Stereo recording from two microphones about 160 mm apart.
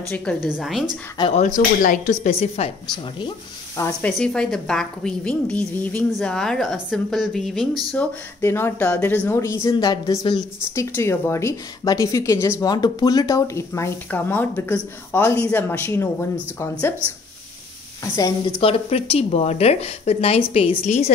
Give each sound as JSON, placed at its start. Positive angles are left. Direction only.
{"t": 0.1, "sound": "a woman's voice", "side_deg": 10}
{"t": 1.3, "sound": "speech", "side_deg": 50}
{"t": 3.7, "sound": "speech", "side_deg": 20}
{"t": 4.2, "sound": "a woman's voice", "side_deg": 5}
{"t": 7.9, "sound": "a woman's voice", "side_deg": 10}
{"t": 18.0, "sound": "a woman's voice", "side_deg": 20}
{"t": 18.6, "sound": "speech", "side_deg": 35}